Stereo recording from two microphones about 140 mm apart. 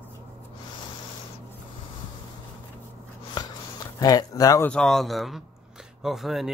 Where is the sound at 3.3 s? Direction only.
25° left (ahead or behind).